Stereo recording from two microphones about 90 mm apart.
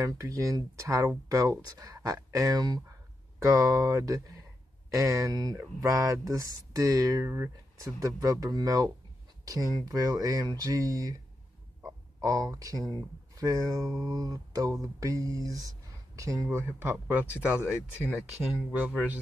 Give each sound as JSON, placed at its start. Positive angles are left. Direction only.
{"t": 0.0, "sound": "speech", "side_deg": -35}
{"t": 3.3, "sound": "speech", "side_deg": -30}
{"t": 11.8, "sound": "a sound", "side_deg": -40}
{"t": 12.9, "sound": "speech", "side_deg": -45}
{"t": 16.4, "sound": "speech", "side_deg": -25}
{"t": 18.7, "sound": "a man's voice", "side_deg": -15}